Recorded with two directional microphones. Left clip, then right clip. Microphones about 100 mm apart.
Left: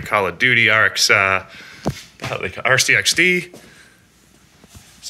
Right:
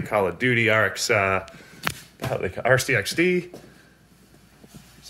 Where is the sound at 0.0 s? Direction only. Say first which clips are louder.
Left 5 dB; 20° right (ahead or behind).